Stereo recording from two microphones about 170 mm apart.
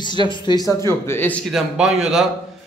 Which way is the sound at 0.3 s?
25° left (ahead or behind).